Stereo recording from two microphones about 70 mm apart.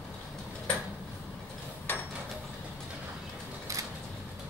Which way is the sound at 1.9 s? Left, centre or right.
Left.